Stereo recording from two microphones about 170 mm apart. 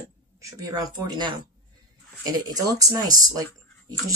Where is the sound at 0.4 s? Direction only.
20° right (ahead or behind).